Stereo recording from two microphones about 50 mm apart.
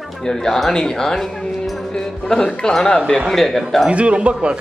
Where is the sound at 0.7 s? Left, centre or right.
Centre.